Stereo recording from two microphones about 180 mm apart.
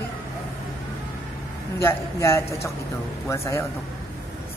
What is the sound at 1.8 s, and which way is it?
Speech, 15° left (ahead or behind).